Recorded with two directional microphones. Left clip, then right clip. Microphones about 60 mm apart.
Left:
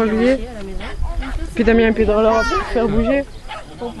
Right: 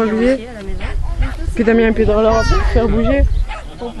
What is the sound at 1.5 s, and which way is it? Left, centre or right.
Speech, centre.